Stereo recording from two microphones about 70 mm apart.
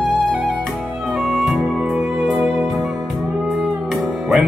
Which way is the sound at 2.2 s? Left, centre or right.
Centre.